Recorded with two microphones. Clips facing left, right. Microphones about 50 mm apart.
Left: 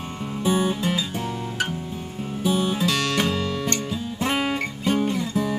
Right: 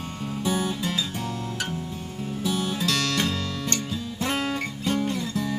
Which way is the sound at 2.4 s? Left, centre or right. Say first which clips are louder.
Left 5 dB; left.